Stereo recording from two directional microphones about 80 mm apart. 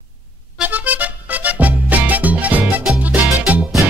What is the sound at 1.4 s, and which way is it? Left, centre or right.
Music, centre.